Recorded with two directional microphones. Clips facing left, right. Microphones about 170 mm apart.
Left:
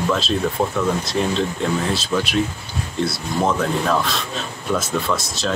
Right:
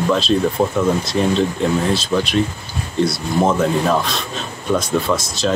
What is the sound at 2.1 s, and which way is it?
Speech, 10° right (ahead or behind).